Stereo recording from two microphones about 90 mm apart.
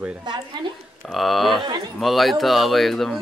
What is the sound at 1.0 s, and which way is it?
A man's voice, centre (ahead or behind).